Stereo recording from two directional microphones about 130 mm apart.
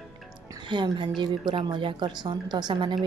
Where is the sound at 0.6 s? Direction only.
35° right (ahead or behind).